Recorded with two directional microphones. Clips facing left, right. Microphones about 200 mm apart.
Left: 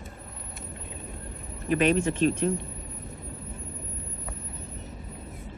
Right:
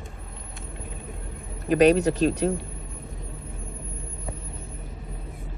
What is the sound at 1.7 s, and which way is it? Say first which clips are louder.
Speech: right 5 dB; 40° right (ahead or behind).